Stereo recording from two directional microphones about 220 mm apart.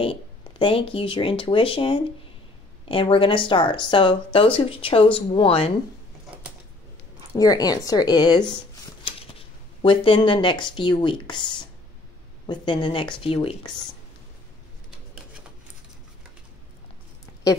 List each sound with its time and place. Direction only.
0.0 s speech: 25° left (ahead or behind)
7.3 s speech: 15° left (ahead or behind)